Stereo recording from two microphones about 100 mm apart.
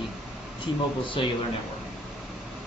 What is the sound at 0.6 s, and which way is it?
Speech, 60° left (ahead or behind).